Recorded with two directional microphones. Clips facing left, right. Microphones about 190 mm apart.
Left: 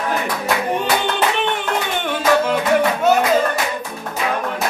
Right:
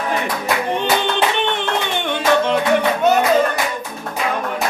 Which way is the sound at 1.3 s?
5° left (ahead or behind).